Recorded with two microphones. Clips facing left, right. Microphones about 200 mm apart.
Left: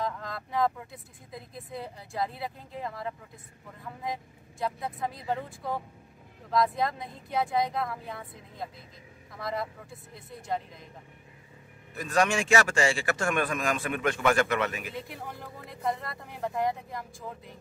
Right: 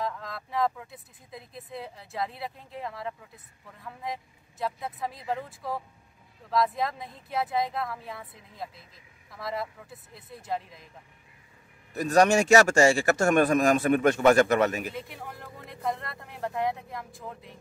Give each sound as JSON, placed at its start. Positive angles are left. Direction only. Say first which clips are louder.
{"t": 0.0, "sound": "speech", "louder": "even", "side_deg": 0}
{"t": 11.9, "sound": "a man's voice", "louder": "right 6 dB", "side_deg": -40}
{"t": 15.0, "sound": "speech", "louder": "even", "side_deg": 0}